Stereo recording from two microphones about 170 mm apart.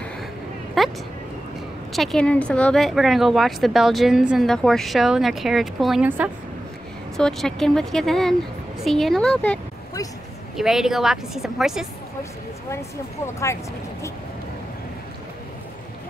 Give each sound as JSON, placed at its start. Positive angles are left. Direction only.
{"t": 0.8, "sound": "a sound", "side_deg": 0}
{"t": 1.9, "sound": "speech", "side_deg": 0}
{"t": 7.2, "sound": "speech", "side_deg": 5}